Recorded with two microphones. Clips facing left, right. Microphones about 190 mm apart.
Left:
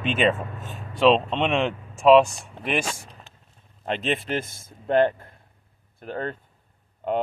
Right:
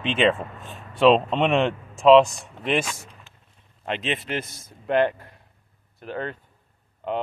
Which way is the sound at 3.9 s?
40° left (ahead or behind).